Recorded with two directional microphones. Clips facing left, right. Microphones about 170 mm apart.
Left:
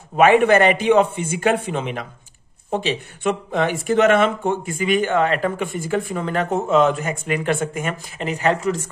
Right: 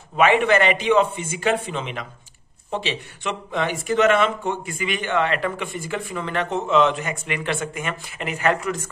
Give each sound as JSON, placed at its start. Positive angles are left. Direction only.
{"t": 0.1, "sound": "speech", "side_deg": 50}